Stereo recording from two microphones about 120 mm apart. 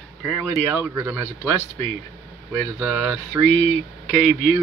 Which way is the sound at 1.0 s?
20° right (ahead or behind).